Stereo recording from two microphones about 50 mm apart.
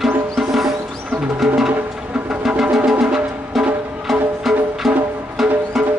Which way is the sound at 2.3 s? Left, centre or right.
Centre.